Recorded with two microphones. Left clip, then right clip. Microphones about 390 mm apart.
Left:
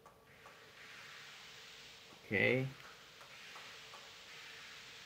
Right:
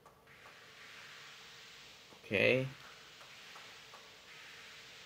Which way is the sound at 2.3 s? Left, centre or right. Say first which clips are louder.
Right 3 dB; centre.